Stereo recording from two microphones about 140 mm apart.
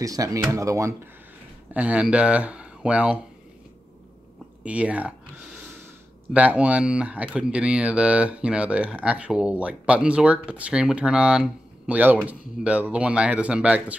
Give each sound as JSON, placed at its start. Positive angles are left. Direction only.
{"t": 0.0, "sound": "speech", "side_deg": -25}
{"t": 1.7, "sound": "speech", "side_deg": -10}
{"t": 4.6, "sound": "speech", "side_deg": -10}